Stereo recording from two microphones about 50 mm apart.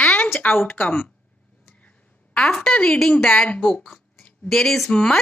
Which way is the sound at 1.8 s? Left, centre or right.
Left.